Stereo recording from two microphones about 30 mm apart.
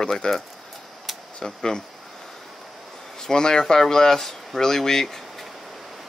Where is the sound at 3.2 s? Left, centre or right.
Left.